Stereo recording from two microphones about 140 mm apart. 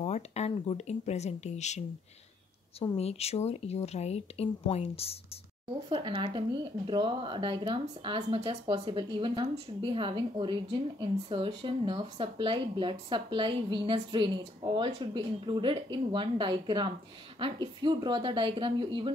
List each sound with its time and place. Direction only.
0.0 s speech: 50° left (ahead or behind)
3.0 s speech: 45° left (ahead or behind)
5.9 s speech: 35° right (ahead or behind)